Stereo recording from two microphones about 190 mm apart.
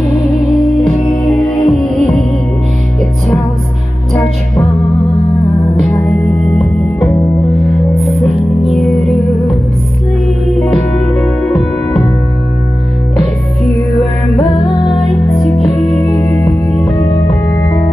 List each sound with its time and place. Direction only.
0.7 s music: centre (ahead or behind)
4.1 s music: 5° left (ahead or behind)
5.8 s music: 5° left (ahead or behind)
7.1 s music: 15° left (ahead or behind)
7.6 s music: centre (ahead or behind)
11.1 s music: centre (ahead or behind)
13.7 s music: 15° left (ahead or behind)
16.0 s music: 15° left (ahead or behind)